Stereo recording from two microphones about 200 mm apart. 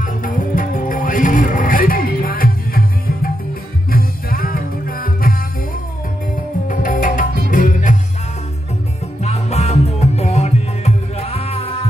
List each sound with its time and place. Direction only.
0.0 s music: 45° left (ahead or behind)
3.9 s music: 45° left (ahead or behind)
6.7 s music: 40° left (ahead or behind)
9.2 s music: 30° left (ahead or behind)